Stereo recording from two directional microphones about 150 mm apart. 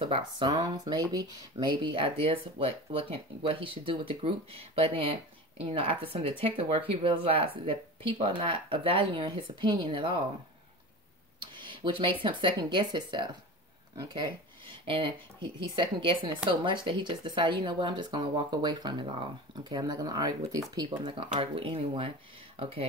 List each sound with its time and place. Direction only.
0.0 s speech: 30° right (ahead or behind)
11.5 s speech: 30° right (ahead or behind)